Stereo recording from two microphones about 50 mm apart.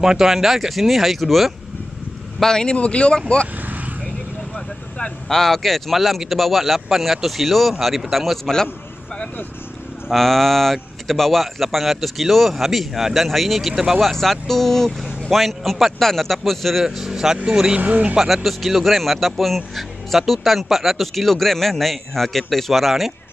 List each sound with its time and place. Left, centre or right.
0.0 s speech: centre
2.4 s speech: centre
3.6 s vehicle: right
4.6 s speech: centre
10.1 s speech: centre
14.0 s speech: centre
17.7 s speech: right
18.1 s speech: centre